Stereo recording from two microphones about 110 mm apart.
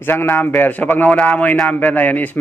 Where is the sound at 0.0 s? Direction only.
20° left (ahead or behind).